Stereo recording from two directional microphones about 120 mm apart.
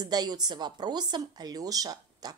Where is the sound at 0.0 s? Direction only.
35° right (ahead or behind).